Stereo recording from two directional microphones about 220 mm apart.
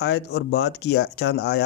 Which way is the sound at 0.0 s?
50° left (ahead or behind).